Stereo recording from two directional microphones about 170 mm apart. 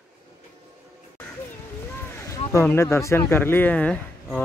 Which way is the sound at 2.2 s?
15° left (ahead or behind).